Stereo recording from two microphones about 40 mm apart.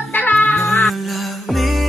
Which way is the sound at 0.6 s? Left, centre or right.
Centre.